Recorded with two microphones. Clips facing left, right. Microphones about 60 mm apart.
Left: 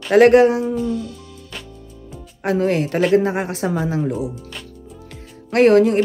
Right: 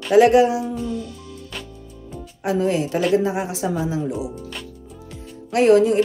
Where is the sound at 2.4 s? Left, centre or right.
Left.